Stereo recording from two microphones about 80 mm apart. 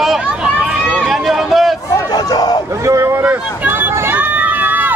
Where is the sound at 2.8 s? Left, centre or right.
Right.